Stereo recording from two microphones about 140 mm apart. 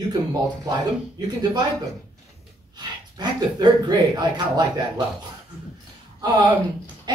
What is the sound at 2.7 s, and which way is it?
Speech, 30° right (ahead or behind).